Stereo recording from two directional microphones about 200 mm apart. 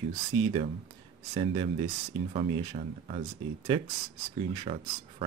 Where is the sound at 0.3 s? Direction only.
25° right (ahead or behind).